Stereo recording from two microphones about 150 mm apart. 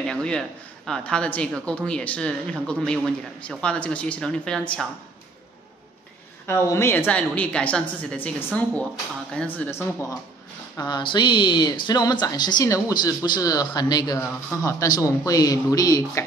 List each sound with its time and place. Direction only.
0.1 s speech: 5° left (ahead or behind)
6.4 s speech: 15° left (ahead or behind)
10.8 s speech: 30° left (ahead or behind)